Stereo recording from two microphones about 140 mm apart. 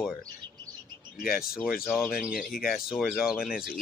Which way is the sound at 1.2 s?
90° left.